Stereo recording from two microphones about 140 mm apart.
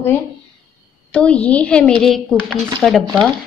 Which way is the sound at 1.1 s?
10° left (ahead or behind).